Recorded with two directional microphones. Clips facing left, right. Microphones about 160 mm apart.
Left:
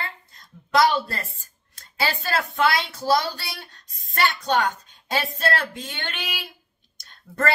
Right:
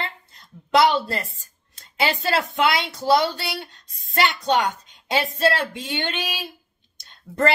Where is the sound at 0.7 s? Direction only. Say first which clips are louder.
Right 2 dB; 25° right (ahead or behind).